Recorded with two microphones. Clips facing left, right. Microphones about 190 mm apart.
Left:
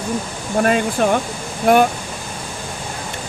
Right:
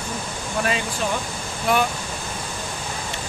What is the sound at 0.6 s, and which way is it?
Speech, 55° left (ahead or behind).